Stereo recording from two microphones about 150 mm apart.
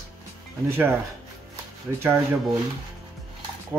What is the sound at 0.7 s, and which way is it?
Speech, 15° right (ahead or behind).